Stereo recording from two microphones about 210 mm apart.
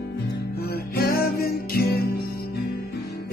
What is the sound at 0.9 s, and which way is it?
Music, 45° left (ahead or behind).